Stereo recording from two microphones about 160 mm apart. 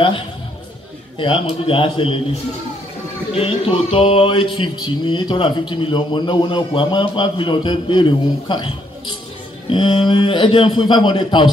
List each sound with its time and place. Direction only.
1.1 s speech: 35° left (ahead or behind)
3.3 s speech: 35° left (ahead or behind)
9.7 s speech: 30° left (ahead or behind)